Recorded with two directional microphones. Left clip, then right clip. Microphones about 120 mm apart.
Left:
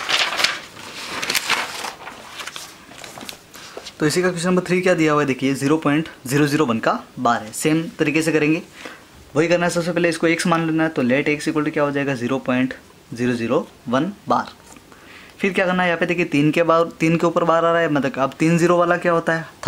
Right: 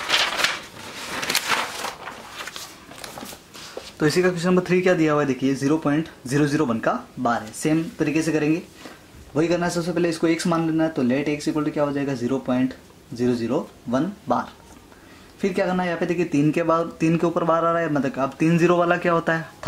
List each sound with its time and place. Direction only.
0.2 s a sound: 10° left (ahead or behind)
4.0 s speech: 15° left (ahead or behind)
9.7 s speech: 25° left (ahead or behind)